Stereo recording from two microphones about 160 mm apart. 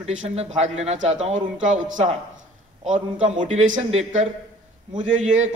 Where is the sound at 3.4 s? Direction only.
50° right (ahead or behind).